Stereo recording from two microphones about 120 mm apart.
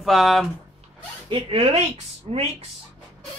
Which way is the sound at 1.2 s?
45° right (ahead or behind).